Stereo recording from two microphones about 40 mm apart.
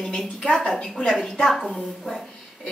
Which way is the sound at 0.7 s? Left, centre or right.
Left.